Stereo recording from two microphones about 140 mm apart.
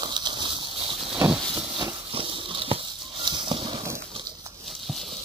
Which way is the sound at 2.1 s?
40° right (ahead or behind).